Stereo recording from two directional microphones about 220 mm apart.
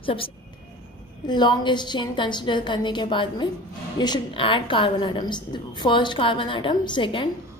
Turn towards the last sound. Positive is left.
turn(degrees=20)  # may be behind; listen again after turning